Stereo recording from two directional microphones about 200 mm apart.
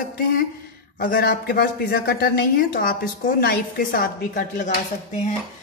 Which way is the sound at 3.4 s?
45° left (ahead or behind).